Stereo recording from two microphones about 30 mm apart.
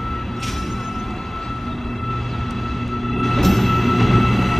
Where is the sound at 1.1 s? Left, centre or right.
Centre.